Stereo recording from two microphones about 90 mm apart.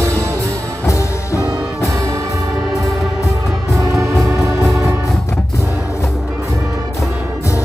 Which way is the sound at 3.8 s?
35° right (ahead or behind).